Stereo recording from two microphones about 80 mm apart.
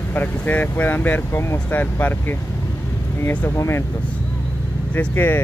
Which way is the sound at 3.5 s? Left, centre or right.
Left.